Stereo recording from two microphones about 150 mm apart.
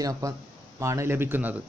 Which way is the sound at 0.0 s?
20° right (ahead or behind).